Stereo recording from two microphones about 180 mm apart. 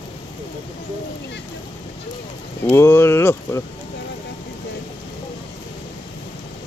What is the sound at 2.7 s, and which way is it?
Speech, 15° left (ahead or behind).